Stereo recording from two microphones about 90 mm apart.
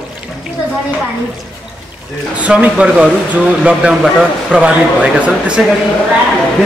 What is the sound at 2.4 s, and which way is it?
Speech, 15° right (ahead or behind).